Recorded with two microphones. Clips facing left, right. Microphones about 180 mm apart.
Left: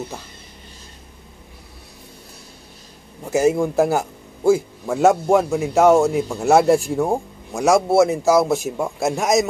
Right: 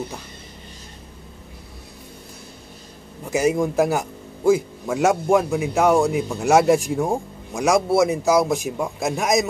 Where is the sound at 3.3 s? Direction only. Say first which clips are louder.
Left 2 dB; 15° right (ahead or behind).